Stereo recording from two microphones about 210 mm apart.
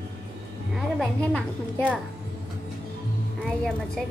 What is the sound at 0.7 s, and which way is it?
A woman's voice, centre (ahead or behind).